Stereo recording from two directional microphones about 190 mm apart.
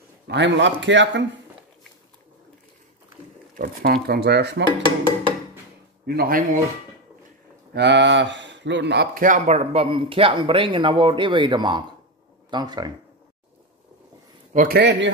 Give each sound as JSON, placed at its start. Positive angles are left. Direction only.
{"t": 0.3, "sound": "speech", "side_deg": -70}
{"t": 3.5, "sound": "speech", "side_deg": -50}
{"t": 6.0, "sound": "speech", "side_deg": -50}
{"t": 7.7, "sound": "speech", "side_deg": -65}
{"t": 14.5, "sound": "a man's voice", "side_deg": -45}
{"t": 14.8, "sound": "speech", "side_deg": -65}